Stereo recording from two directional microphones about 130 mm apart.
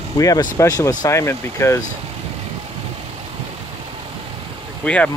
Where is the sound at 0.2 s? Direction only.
25° left (ahead or behind).